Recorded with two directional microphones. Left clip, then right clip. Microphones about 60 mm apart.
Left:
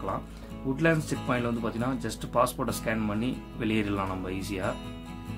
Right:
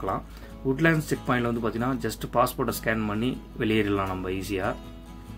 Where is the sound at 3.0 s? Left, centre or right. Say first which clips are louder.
Right 2 dB; centre.